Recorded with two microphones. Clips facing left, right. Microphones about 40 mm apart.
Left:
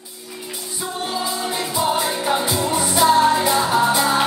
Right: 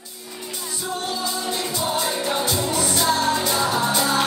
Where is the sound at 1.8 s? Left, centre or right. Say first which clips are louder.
Left 5 dB; centre.